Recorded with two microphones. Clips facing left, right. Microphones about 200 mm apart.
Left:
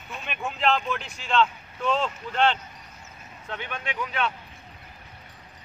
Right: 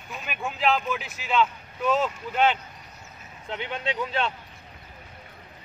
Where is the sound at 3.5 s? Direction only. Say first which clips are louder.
Right 4 dB; 20° right (ahead or behind).